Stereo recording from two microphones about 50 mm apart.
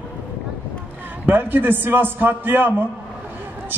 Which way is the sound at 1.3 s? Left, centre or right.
Right.